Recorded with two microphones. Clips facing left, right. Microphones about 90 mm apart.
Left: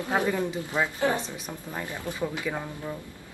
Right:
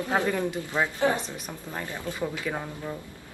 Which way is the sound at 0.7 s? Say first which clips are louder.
Right 1 dB; 20° right (ahead or behind).